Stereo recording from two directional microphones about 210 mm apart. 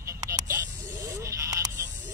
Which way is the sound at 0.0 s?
15° right (ahead or behind).